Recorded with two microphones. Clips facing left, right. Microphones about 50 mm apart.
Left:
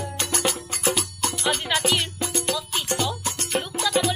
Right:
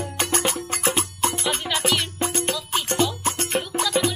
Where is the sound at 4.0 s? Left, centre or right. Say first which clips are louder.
Even; centre.